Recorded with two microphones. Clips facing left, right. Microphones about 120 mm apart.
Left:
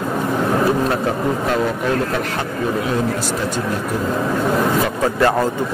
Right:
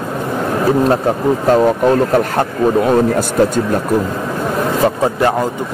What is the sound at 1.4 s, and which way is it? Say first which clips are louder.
A man's voice: right 8 dB; 40° right (ahead or behind).